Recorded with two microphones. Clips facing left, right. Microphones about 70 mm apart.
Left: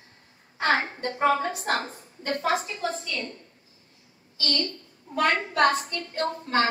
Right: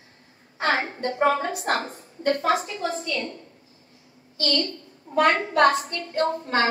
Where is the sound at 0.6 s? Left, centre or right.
Right.